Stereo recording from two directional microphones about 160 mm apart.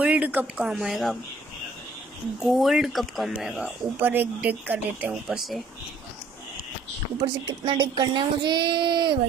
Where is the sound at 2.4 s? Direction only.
Centre (ahead or behind).